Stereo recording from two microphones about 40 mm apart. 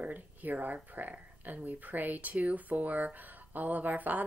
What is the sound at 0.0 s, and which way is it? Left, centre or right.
Speech, right.